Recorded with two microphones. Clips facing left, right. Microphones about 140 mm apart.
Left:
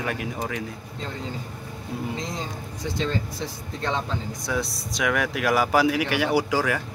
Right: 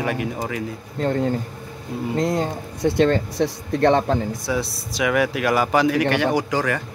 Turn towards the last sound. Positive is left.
turn(degrees=5)  # may be behind; listen again after turning